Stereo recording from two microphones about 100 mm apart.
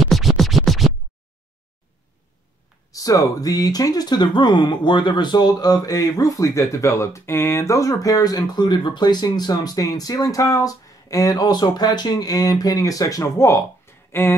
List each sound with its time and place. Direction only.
0.0 s music: centre (ahead or behind)
2.9 s speech: 35° left (ahead or behind)